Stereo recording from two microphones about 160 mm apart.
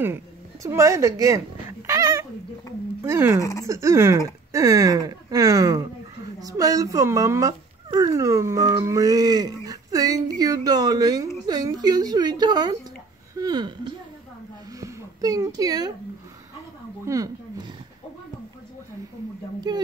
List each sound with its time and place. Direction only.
0.0 s a sound: 15° right (ahead or behind)
3.0 s speech: 15° right (ahead or behind)
3.3 s speech: 20° left (ahead or behind)
3.6 s speech: 20° right (ahead or behind)
14.8 s a sound: 20° right (ahead or behind)
17.0 s speech: 20° right (ahead or behind)
19.7 s speech: 25° right (ahead or behind)